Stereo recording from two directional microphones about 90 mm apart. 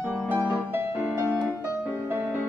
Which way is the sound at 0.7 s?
25° right (ahead or behind).